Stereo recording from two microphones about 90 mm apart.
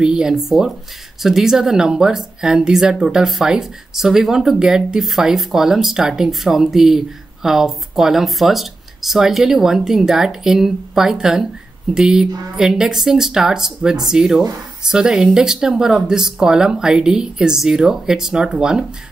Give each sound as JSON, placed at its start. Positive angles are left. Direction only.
{"t": 0.0, "sound": "speech", "side_deg": -5}